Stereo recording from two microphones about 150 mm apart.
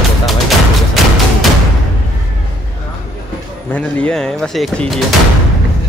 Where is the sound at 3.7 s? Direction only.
10° left (ahead or behind).